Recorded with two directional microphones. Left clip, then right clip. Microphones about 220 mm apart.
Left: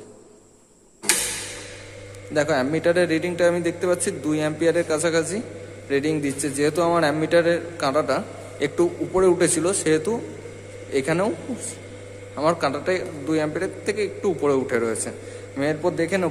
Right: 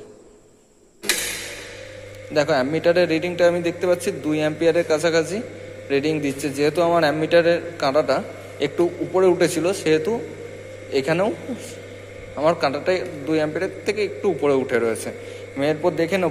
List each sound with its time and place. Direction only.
2.3 s a man's voice: 5° left (ahead or behind)